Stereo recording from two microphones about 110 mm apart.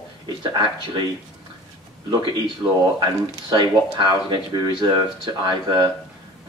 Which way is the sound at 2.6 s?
45° right (ahead or behind).